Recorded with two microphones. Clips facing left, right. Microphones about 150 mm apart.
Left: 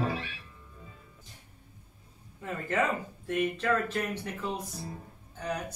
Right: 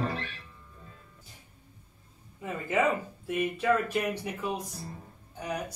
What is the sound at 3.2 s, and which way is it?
Speech, 10° right (ahead or behind).